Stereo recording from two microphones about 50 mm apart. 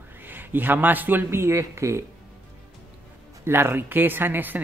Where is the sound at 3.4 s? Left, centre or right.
Right.